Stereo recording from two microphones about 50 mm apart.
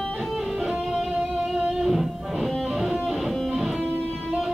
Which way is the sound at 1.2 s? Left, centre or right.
Centre.